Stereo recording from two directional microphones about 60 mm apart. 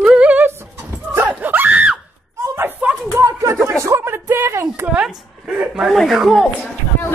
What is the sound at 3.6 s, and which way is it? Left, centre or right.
Speech, right.